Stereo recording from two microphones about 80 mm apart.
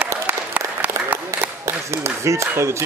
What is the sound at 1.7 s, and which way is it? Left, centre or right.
Speech, right.